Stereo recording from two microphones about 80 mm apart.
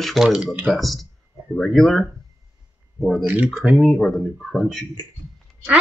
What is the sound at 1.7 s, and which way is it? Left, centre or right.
Speech, centre.